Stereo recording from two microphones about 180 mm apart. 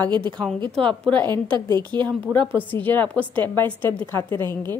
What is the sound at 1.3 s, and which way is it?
Speech, 25° right (ahead or behind).